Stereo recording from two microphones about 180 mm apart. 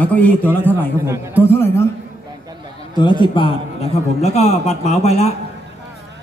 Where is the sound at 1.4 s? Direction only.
15° left (ahead or behind).